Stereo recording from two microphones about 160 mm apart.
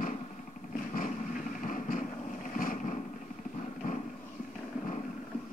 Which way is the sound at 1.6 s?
55° left (ahead or behind).